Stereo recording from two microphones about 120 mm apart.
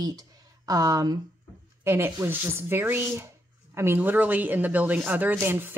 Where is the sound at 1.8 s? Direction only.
20° right (ahead or behind).